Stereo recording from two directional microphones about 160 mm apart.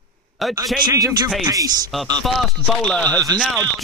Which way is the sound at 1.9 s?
Centre (ahead or behind).